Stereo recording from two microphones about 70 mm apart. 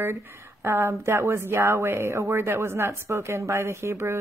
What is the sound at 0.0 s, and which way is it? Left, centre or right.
Speech, right.